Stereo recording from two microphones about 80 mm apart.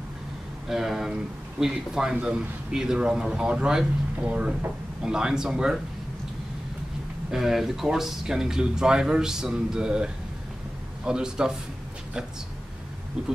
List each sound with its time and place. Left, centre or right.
0.7 s speech: centre
7.2 s speech: centre